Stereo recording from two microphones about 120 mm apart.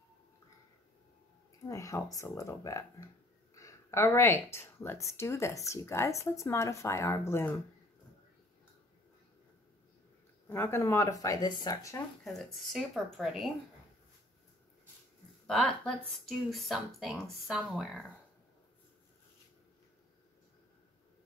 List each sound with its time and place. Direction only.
1.7 s speech: 25° left (ahead or behind)
10.5 s speech: 20° left (ahead or behind)
12.3 s speech: centre (ahead or behind)
15.4 s speech: 5° left (ahead or behind)